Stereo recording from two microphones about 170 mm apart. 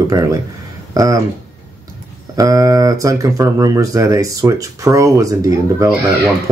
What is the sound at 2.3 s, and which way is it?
Speech, 20° right (ahead or behind).